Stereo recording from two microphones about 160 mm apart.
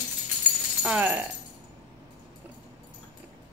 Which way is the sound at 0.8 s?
10° right (ahead or behind).